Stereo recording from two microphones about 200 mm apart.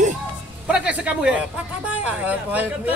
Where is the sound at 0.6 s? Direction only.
5° right (ahead or behind).